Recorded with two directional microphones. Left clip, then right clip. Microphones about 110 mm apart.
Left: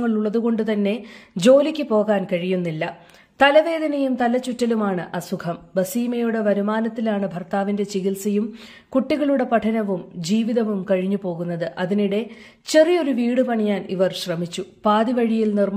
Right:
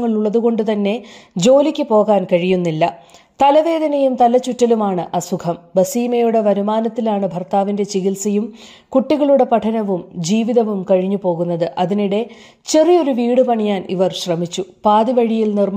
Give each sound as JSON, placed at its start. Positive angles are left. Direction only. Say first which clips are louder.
{"t": 0.0, "sound": "a woman's voice", "louder": "right 6 dB", "side_deg": -35}
{"t": 2.4, "sound": "a woman's voice", "louder": "right 8 dB", "side_deg": -60}
{"t": 3.3, "sound": "a woman's voice", "louder": "right 3 dB", "side_deg": -35}
{"t": 10.9, "sound": "speech", "louder": "right 7 dB", "side_deg": -30}
{"t": 11.4, "sound": "speech", "louder": "right 7 dB", "side_deg": -50}
{"t": 12.6, "sound": "a woman's voice", "louder": "right 4 dB", "side_deg": -30}
{"t": 13.6, "sound": "a woman's voice", "louder": "right 4 dB", "side_deg": -55}